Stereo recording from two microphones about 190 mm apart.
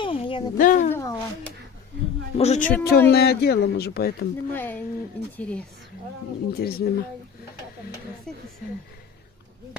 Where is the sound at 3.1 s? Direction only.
55° left (ahead or behind).